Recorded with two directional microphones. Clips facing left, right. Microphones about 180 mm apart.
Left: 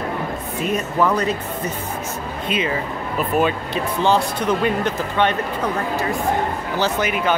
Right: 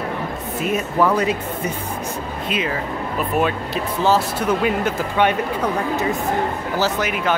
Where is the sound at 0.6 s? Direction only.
5° right (ahead or behind).